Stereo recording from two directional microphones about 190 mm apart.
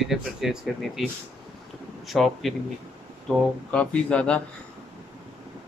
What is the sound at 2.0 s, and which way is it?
A man's voice, centre (ahead or behind).